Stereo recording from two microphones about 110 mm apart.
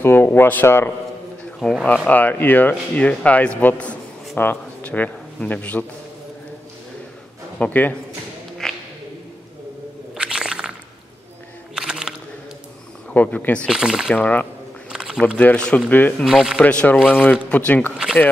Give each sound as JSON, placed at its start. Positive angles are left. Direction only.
{"t": 0.0, "sound": "speech", "side_deg": 20}
{"t": 1.6, "sound": "speech", "side_deg": 5}
{"t": 2.0, "sound": "speech", "side_deg": 15}
{"t": 7.5, "sound": "speech", "side_deg": 15}
{"t": 8.6, "sound": "a sound", "side_deg": 5}
{"t": 10.1, "sound": "squish", "side_deg": -10}
{"t": 11.7, "sound": "a sound", "side_deg": -5}
{"t": 13.1, "sound": "speech", "side_deg": 15}
{"t": 13.7, "sound": "speech", "side_deg": -5}
{"t": 14.1, "sound": "speech", "side_deg": 15}
{"t": 14.9, "sound": "a sound", "side_deg": -5}
{"t": 15.2, "sound": "speech", "side_deg": 15}
{"t": 16.3, "sound": "speech", "side_deg": -5}
{"t": 16.6, "sound": "speech", "side_deg": 15}